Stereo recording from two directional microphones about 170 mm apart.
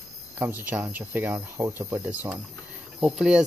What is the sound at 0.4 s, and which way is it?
Speech, 10° right (ahead or behind).